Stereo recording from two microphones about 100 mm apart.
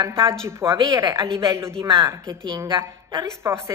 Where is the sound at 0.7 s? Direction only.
40° right (ahead or behind).